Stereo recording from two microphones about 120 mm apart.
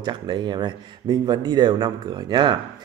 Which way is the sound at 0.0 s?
40° right (ahead or behind).